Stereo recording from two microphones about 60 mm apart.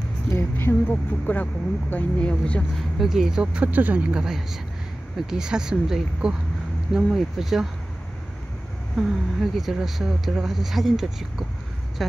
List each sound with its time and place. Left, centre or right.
0.3 s speech: left; by 2.6 s centre
3.0 s speech: centre
3.6 s speech: right
4.1 s speech: centre
8.9 s speech: centre